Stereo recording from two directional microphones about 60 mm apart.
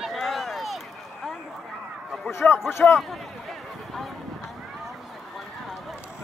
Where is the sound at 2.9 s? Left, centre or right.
Centre.